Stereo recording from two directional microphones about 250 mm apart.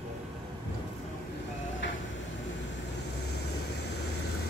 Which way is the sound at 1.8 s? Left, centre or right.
Left.